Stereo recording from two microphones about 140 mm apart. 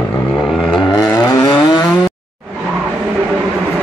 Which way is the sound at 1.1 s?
25° left (ahead or behind).